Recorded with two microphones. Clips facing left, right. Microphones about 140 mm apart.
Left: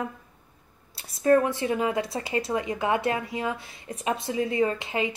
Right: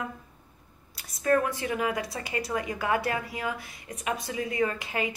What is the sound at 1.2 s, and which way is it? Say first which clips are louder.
Speech: left 4 dB; 25° left (ahead or behind).